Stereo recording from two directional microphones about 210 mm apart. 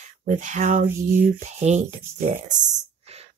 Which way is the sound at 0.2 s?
35° right (ahead or behind).